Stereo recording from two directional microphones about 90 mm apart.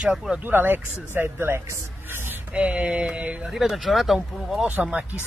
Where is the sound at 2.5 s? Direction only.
15° right (ahead or behind).